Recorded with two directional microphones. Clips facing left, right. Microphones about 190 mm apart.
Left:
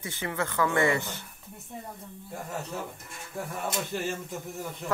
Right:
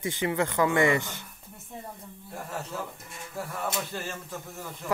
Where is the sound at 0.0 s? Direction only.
15° right (ahead or behind).